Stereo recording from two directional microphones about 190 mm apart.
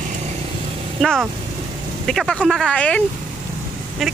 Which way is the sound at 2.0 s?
5° left (ahead or behind).